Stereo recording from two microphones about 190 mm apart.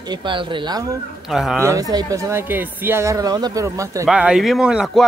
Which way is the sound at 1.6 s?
15° right (ahead or behind).